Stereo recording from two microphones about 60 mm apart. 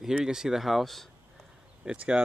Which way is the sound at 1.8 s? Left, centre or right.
Centre.